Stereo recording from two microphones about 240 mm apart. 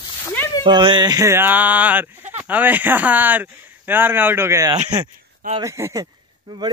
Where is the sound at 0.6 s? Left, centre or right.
Centre.